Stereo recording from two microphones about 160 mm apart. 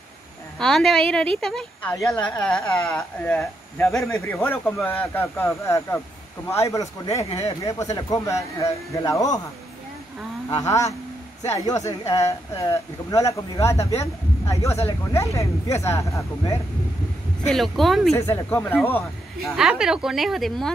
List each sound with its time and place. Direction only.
0.6 s speech: 5° left (ahead or behind)
4.4 s speech: 15° left (ahead or behind)
10.5 s speech: 20° left (ahead or behind)
17.4 s speech: centre (ahead or behind)
18.1 s speech: 15° left (ahead or behind)
19.4 s speech: centre (ahead or behind)